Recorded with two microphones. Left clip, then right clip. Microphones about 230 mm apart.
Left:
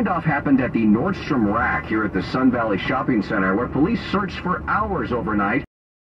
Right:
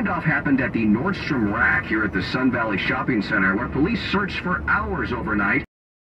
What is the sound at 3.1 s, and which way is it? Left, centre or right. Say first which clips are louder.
Speech: even; right.